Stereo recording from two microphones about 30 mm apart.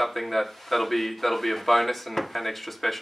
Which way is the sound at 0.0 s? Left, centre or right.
Centre.